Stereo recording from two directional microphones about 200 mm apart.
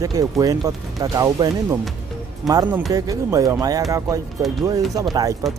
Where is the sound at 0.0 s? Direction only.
15° right (ahead or behind).